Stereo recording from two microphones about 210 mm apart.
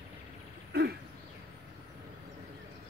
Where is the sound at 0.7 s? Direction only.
50° right (ahead or behind).